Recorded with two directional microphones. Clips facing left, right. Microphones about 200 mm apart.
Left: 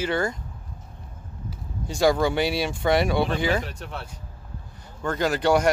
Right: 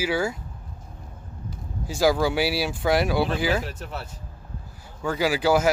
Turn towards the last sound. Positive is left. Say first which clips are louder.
# even
turn(degrees=-5)  # may be behind; listen again after turning